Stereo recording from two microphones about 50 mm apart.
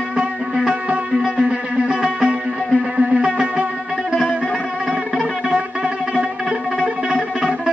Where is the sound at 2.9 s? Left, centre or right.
Right.